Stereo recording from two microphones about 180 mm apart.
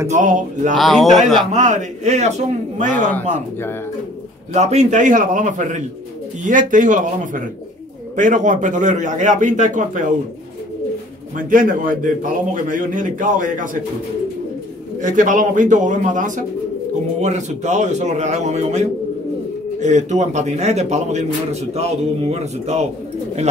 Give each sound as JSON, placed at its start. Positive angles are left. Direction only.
{"t": 0.1, "sound": "a man's voice", "side_deg": -45}
{"t": 0.7, "sound": "speech", "side_deg": 0}
{"t": 1.5, "sound": "a man's voice", "side_deg": -40}
{"t": 2.9, "sound": "speech", "side_deg": 10}
{"t": 4.6, "sound": "a man's voice", "side_deg": -40}
{"t": 11.3, "sound": "a man's voice", "side_deg": -50}
{"t": 15.0, "sound": "a man's voice", "side_deg": -45}